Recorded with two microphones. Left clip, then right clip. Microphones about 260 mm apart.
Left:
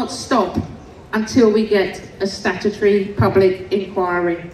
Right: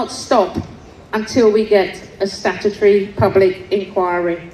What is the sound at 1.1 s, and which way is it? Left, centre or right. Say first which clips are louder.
Speech: right 1 dB; centre.